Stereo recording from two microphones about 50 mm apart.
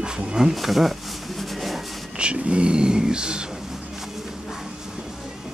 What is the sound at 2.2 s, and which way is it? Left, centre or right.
Speech, right.